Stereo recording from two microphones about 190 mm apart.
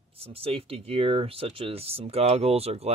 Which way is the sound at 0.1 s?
30° right (ahead or behind).